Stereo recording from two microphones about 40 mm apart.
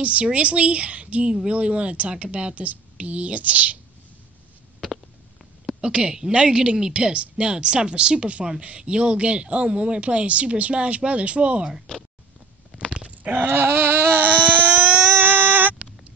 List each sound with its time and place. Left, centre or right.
0.0 s a woman's voice: right
5.8 s speech: right
13.2 s goat: right
13.5 s baby cry: right
15.1 s a sound: right